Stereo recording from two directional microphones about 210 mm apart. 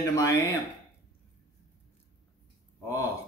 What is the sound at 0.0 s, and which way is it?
Speech, 15° left (ahead or behind).